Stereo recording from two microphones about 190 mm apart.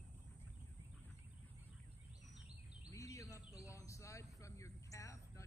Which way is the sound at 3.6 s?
15° left (ahead or behind).